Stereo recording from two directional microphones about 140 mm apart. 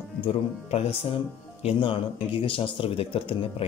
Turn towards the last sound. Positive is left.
turn(degrees=40)  # may be behind; listen again after turning